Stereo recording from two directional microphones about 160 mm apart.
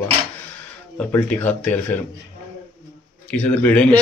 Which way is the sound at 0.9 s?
10° left (ahead or behind).